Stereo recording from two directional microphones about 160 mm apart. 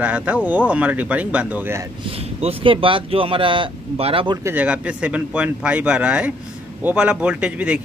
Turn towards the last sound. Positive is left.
turn(degrees=-5)  # may be behind; listen again after turning